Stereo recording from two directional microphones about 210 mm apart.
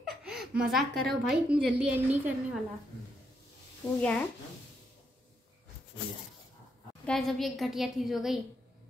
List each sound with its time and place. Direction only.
0.0 s a sound: centre (ahead or behind)
1.0 s a woman's voice: 5° right (ahead or behind)
3.8 s speech: 5° left (ahead or behind)
7.1 s a woman's voice: centre (ahead or behind)